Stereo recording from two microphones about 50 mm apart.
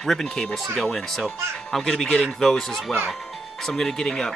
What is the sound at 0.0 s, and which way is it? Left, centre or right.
Speech, centre.